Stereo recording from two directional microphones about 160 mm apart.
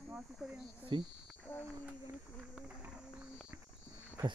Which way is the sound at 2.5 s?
5° right (ahead or behind).